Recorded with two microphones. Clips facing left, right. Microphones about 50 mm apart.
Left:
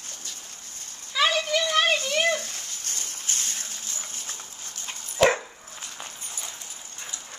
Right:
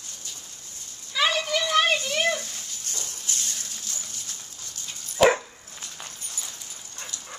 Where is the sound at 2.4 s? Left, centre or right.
Left.